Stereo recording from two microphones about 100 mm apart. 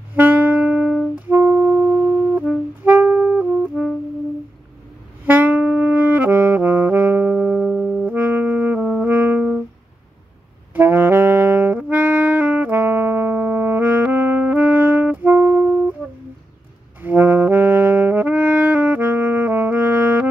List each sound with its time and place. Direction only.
0.1 s saxophone: 15° right (ahead or behind)
5.2 s saxophone: 15° right (ahead or behind)
8.1 s brass instrument: 15° right (ahead or behind)
10.7 s saxophone: 15° right (ahead or behind)
16.0 s a sound: 15° right (ahead or behind)
17.0 s saxophone: 20° right (ahead or behind)